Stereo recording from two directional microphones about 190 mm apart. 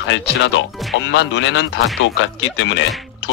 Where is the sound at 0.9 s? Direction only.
75° left (ahead or behind).